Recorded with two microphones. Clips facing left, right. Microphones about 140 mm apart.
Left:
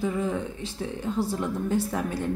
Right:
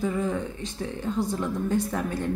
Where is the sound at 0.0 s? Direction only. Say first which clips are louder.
Even; centre (ahead or behind).